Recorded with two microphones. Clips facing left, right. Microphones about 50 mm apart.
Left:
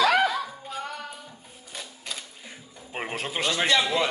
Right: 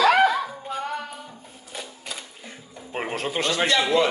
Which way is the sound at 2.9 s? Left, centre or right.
Centre.